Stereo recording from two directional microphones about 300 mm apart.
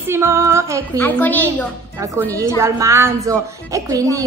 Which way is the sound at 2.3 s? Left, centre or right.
Centre.